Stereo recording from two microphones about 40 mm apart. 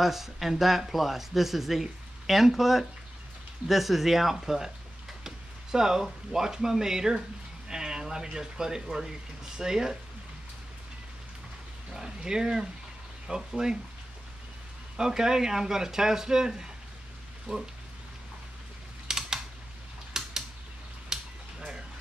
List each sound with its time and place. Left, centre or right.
0.0 s speech: centre
11.9 s speech: centre
15.0 s speech: centre
19.0 s typing: centre
20.1 s mechanisms: centre
21.1 s a sound: centre